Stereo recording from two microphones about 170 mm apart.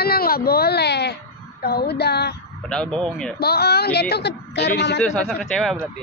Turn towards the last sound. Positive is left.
turn(degrees=5)  # may be behind; listen again after turning